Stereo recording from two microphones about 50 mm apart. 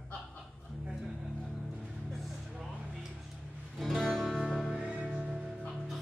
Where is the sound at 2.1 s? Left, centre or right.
Centre.